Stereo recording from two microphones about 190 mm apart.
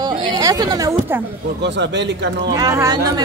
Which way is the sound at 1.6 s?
65° right (ahead or behind).